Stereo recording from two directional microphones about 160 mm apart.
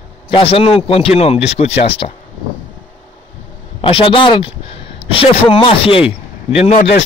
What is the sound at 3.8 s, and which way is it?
Speech, 35° left (ahead or behind).